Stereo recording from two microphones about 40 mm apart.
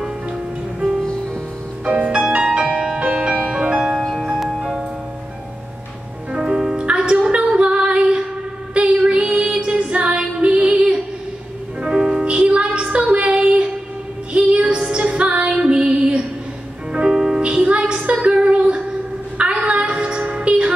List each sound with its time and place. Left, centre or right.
0.7 s music: right
3.0 s music: right
4.4 s music: centre
6.3 s music: right
17.1 s music: centre
17.4 s music: right
19.3 s a sound: right